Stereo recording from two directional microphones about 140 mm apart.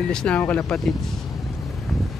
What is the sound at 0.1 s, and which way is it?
Speech, 5° left (ahead or behind).